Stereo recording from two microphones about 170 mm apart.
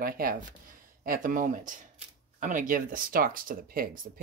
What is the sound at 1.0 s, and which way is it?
Speech, 55° right (ahead or behind).